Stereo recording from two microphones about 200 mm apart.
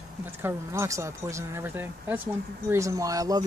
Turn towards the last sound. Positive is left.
turn(degrees=-20)  # may be behind; listen again after turning